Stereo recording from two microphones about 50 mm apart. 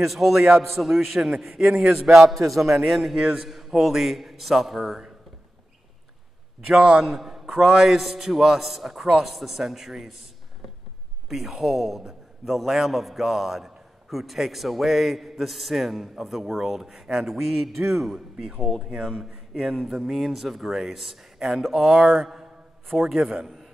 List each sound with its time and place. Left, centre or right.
0.0 s a man's voice: centre
1.5 s speech: centre
2.0 s a man's voice: centre
6.8 s speech: centre
7.1 s a man's voice: centre